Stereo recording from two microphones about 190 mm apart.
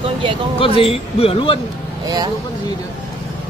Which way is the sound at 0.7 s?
30° left (ahead or behind).